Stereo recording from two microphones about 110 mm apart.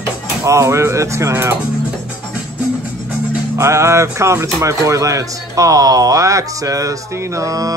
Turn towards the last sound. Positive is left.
turn(degrees=-30)  # may be behind; listen again after turning